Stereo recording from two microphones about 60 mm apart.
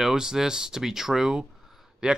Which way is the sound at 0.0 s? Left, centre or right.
Centre.